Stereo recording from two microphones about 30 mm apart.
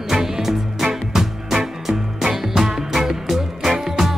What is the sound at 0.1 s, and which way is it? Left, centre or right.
Music, centre.